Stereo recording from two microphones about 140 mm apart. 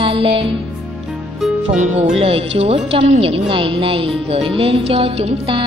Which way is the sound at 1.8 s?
55° right (ahead or behind).